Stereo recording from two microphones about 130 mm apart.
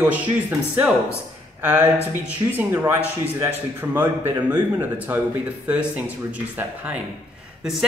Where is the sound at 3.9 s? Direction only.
15° right (ahead or behind).